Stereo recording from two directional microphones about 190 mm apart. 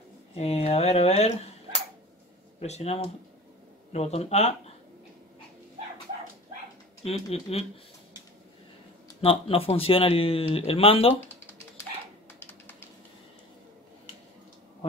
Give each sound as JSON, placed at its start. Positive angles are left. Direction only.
{"t": 0.4, "sound": "speech", "side_deg": 35}
{"t": 2.6, "sound": "speech", "side_deg": 35}
{"t": 7.1, "sound": "speech", "side_deg": 35}
{"t": 9.2, "sound": "speech", "side_deg": 30}
{"t": 12.4, "sound": "bird", "side_deg": 10}